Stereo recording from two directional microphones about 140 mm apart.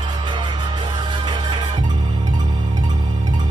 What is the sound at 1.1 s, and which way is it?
Music, 35° right (ahead or behind).